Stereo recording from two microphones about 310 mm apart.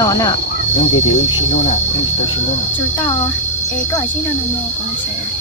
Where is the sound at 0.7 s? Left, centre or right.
Left.